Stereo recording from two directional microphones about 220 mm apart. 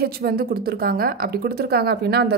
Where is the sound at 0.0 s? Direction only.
45° right (ahead or behind).